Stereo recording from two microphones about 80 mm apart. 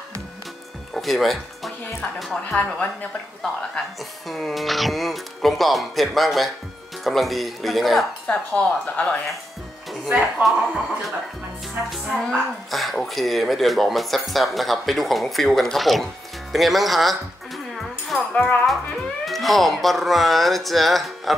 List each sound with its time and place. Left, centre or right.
0.9 s speech: centre
2.5 s a woman's voice: centre
4.3 s speech: centre
8.3 s speech: centre
10.0 s speech: centre
11.9 s speech: centre
18.3 s speech: centre
19.2 s speech: centre